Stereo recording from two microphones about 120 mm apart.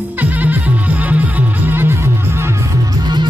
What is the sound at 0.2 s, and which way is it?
Music, 15° right (ahead or behind).